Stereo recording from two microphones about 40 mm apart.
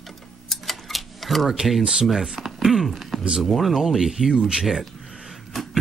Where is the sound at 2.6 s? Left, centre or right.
Centre.